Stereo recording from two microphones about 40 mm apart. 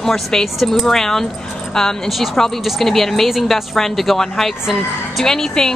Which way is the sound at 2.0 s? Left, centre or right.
Centre.